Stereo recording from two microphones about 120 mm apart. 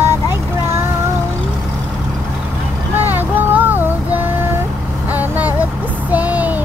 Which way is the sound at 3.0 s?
15° right (ahead or behind).